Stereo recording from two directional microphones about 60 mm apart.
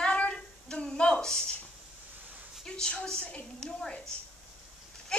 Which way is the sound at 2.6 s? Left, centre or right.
Centre.